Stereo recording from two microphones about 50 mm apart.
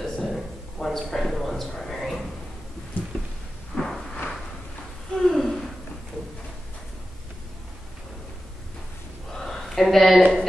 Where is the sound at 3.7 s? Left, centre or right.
Centre.